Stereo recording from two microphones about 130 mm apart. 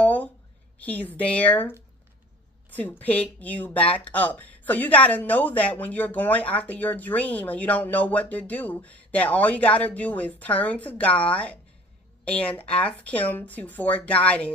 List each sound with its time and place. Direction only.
0.0 s a sound: 10° left (ahead or behind)
0.7 s speech: 10° left (ahead or behind)
2.7 s speech: 15° left (ahead or behind)